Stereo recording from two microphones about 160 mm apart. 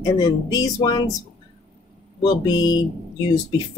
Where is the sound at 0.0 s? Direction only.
25° left (ahead or behind).